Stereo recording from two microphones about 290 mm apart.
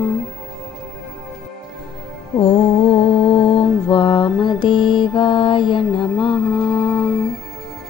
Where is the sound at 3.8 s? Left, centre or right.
Centre.